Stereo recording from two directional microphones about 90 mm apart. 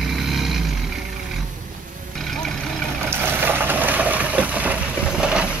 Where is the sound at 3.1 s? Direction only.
25° right (ahead or behind).